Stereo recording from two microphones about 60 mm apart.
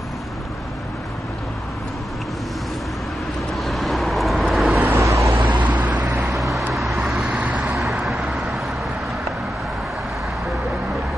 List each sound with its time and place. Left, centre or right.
3.5 s vehicle: centre
4.7 s vehicle: right
5.6 s vehicle: right
6.0 s vehicle: centre